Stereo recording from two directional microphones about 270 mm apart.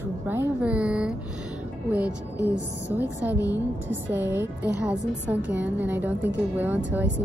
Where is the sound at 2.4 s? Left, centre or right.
Right.